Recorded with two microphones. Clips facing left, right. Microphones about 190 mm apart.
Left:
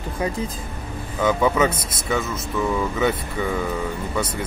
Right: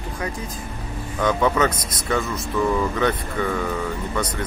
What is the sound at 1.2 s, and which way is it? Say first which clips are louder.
Speech: left 1 dB; 10° left (ahead or behind).